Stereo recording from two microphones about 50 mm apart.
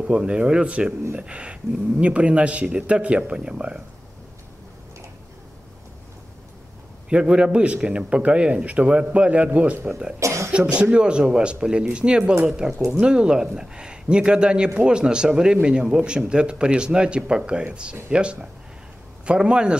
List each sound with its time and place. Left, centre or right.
0.0 s a man's voice: centre
7.1 s a man's voice: right
10.1 s cough: right
10.7 s a man's voice: right